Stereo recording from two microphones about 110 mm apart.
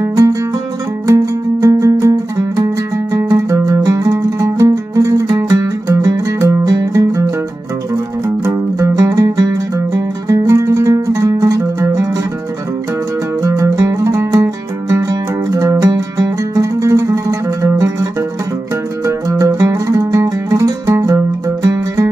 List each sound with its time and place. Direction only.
0.0 s music: 30° right (ahead or behind)
8.5 s music: 30° right (ahead or behind)
13.4 s music: 30° right (ahead or behind)
19.0 s music: 30° right (ahead or behind)